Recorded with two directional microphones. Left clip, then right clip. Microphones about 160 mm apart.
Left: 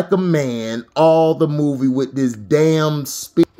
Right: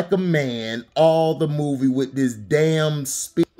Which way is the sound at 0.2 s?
20° left (ahead or behind).